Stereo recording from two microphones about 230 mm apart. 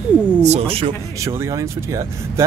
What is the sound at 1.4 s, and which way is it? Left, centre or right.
Speech, centre.